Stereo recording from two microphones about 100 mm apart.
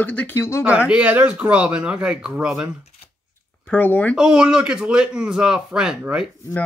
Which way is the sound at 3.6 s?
15° left (ahead or behind).